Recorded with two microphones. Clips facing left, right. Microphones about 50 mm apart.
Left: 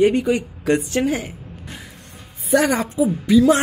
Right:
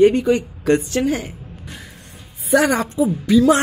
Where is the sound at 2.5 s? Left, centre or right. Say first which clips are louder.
Right 1 dB; centre.